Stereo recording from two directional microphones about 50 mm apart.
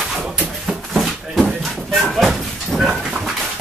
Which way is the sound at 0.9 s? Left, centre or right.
Centre.